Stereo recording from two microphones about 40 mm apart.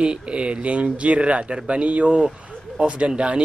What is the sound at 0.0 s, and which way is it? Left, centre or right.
Speech, right.